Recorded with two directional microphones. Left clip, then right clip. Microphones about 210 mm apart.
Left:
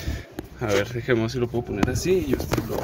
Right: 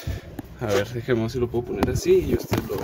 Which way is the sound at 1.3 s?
Centre (ahead or behind).